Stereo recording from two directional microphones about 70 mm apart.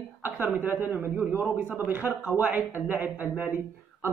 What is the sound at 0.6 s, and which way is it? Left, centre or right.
Speech, right.